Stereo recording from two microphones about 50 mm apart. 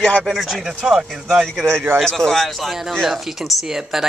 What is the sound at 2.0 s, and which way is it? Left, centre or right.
A man's voice, centre.